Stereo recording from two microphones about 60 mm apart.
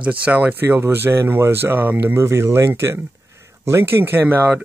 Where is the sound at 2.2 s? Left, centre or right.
Right.